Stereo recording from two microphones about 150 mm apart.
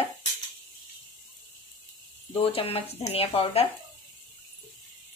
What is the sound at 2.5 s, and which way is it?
Speech, 40° left (ahead or behind).